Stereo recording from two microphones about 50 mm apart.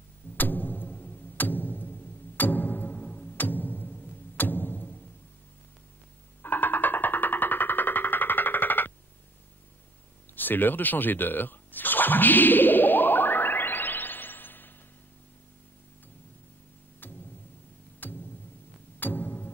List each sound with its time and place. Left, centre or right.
0.4 s music: left
6.4 s music: left
10.3 s a sound: left
17.0 s music: left